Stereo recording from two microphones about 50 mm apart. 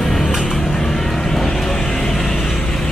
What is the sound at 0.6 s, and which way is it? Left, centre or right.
Vehicle, centre.